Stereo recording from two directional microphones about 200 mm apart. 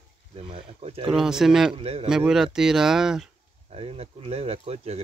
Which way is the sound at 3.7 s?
30° right (ahead or behind).